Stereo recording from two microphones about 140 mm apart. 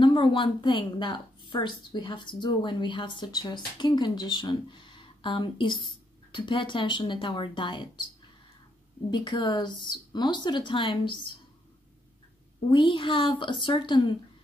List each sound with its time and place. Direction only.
0.0 s a woman's voice: 35° left (ahead or behind)
9.1 s a woman's voice: 35° left (ahead or behind)
12.6 s a woman's voice: 35° left (ahead or behind)